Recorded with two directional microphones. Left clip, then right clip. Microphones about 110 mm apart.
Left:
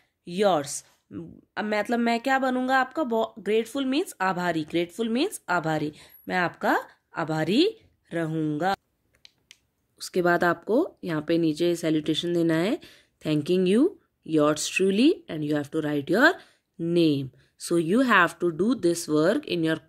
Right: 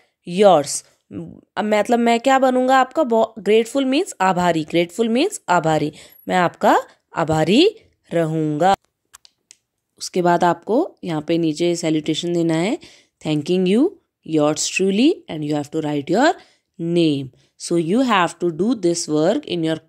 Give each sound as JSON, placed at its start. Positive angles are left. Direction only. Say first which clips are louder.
{"t": 0.2, "sound": "speech", "louder": "right 10 dB", "side_deg": -50}
{"t": 1.1, "sound": "speech", "louder": "right 6 dB", "side_deg": -35}
{"t": 1.5, "sound": "speech", "louder": "right 9 dB", "side_deg": -55}
{"t": 2.0, "sound": "a sound", "louder": "right 9 dB", "side_deg": -55}
{"t": 2.5, "sound": "speech", "louder": "right 9 dB", "side_deg": -50}
{"t": 9.9, "sound": "speech", "louder": "right 6 dB", "side_deg": -25}